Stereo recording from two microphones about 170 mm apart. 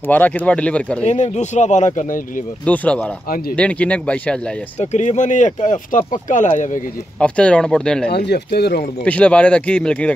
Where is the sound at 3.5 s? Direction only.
10° left (ahead or behind).